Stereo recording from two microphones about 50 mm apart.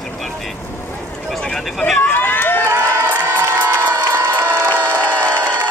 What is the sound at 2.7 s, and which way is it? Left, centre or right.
Crowd, right.